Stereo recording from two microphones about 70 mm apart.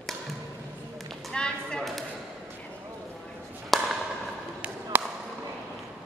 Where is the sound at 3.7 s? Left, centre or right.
Centre.